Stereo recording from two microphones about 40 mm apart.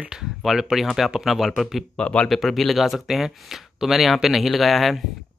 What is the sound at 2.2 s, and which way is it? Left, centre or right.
Speech, centre.